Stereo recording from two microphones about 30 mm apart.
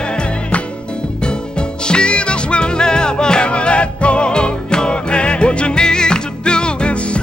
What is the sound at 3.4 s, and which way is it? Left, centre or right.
Music, left.